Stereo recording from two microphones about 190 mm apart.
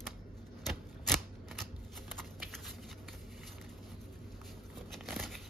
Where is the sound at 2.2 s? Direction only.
Centre (ahead or behind).